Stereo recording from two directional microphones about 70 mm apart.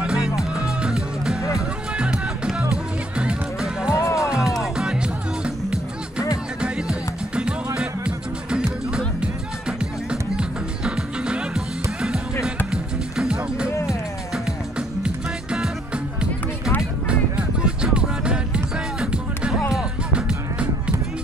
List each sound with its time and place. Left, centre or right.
0.4 s music: centre
3.9 s music: left
4.3 s music: centre
6.6 s music: centre
17.1 s music: centre